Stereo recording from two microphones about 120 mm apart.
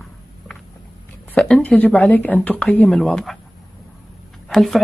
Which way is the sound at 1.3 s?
10° left (ahead or behind).